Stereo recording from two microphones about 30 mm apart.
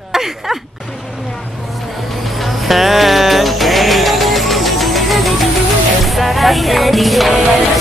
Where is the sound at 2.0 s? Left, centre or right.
Centre.